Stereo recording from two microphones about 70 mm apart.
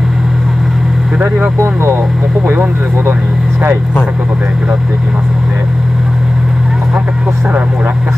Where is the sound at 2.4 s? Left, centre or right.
Right.